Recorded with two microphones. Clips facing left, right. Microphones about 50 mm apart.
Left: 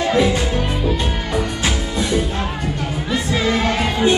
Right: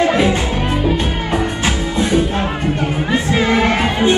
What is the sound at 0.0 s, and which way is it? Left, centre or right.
Music, right.